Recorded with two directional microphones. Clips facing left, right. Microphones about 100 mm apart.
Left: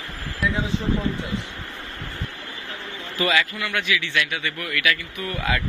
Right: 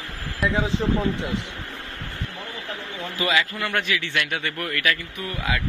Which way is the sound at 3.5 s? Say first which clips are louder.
Even; 40° right (ahead or behind).